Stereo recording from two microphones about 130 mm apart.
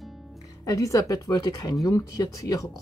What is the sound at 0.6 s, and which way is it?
Speech, 25° left (ahead or behind).